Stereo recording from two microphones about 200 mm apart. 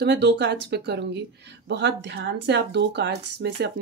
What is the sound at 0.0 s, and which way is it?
Speech, 60° right (ahead or behind).